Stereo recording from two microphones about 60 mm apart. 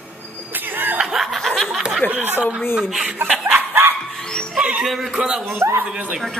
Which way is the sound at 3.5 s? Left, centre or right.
Right.